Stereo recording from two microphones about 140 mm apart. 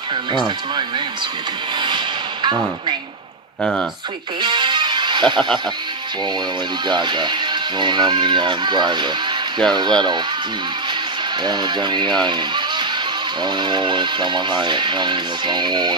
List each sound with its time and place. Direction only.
1.8 s a sound: 30° right (ahead or behind)
4.4 s music: 30° right (ahead or behind)
6.9 s speech: 30° right (ahead or behind)
11.4 s speech: 30° right (ahead or behind)